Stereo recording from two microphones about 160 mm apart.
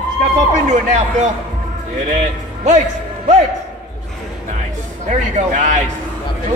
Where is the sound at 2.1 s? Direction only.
50° right (ahead or behind).